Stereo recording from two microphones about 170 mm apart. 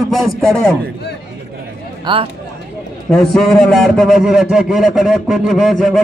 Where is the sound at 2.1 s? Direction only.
25° right (ahead or behind).